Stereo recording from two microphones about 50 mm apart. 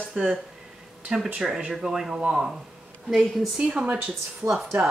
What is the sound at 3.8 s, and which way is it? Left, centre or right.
Speech, right.